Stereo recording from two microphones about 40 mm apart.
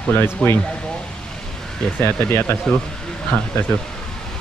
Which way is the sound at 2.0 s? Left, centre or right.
Left.